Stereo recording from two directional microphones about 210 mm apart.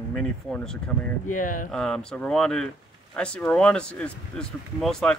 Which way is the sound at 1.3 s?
40° left (ahead or behind).